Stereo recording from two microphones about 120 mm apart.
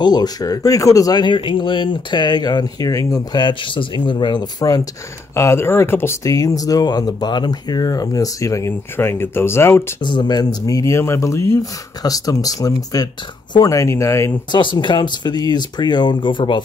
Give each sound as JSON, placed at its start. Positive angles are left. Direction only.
{"t": 0.0, "sound": "speech", "side_deg": 35}
{"t": 10.0, "sound": "speech", "side_deg": 40}
{"t": 14.5, "sound": "speech", "side_deg": 40}